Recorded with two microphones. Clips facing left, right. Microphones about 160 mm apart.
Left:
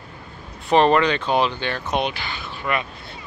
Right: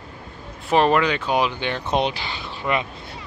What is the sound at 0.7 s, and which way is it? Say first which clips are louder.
Speech: left 2 dB; 5° right (ahead or behind).